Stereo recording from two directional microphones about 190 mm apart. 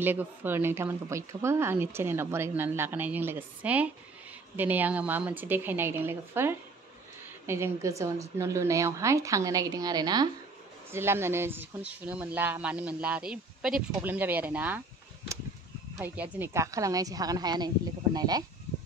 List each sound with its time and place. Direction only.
0.0 s a woman's voice: 10° right (ahead or behind)
16.0 s a woman's voice: 10° right (ahead or behind)